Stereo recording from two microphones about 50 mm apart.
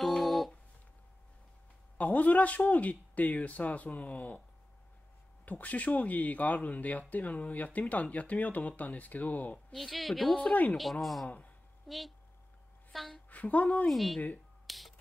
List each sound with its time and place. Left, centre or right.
0.0 s a sound: centre
2.0 s speech: left
5.4 s speech: left
9.8 s a woman's voice: centre
10.3 s speech: left
10.8 s a woman's voice: centre
11.2 s speech: left
11.9 s a woman's voice: centre
13.3 s speech: left
13.8 s a woman's voice: centre
14.7 s a sound: centre